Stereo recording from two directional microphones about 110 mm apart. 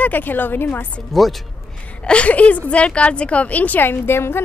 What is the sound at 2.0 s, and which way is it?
A woman's voice, 10° left (ahead or behind).